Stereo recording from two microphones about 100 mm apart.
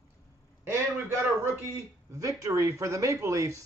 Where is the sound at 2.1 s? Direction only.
35° right (ahead or behind).